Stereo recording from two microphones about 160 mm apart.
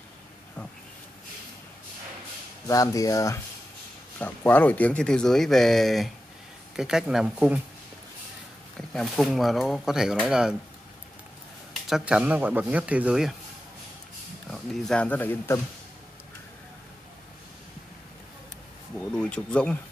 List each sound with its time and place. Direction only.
2.7 s speech: 20° left (ahead or behind); by 7.6 s 5° right (ahead or behind)
8.7 s speech: centre (ahead or behind)
11.9 s speech: 5° right (ahead or behind)
14.5 s speech: 5° left (ahead or behind)
18.9 s speech: 5° left (ahead or behind)